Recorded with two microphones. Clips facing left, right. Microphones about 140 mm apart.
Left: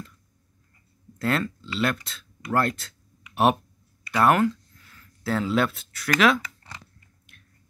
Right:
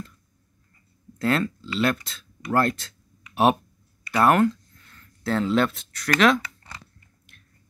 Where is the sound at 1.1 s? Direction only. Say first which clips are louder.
Right 2 dB; centre (ahead or behind).